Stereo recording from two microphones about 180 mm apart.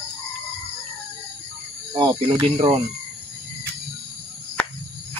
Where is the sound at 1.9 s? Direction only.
25° right (ahead or behind).